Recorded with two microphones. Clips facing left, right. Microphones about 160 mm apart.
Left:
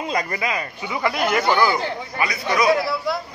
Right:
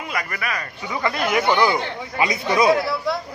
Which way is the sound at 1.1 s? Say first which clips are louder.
Even; centre (ahead or behind).